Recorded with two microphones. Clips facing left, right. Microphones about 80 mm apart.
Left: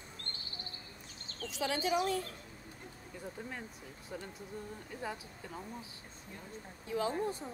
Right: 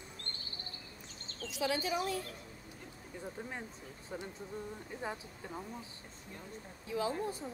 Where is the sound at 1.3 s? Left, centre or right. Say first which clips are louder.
Right 1 dB; left.